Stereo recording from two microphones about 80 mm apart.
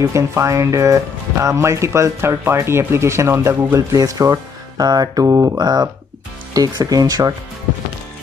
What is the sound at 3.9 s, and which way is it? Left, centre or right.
Speech, right.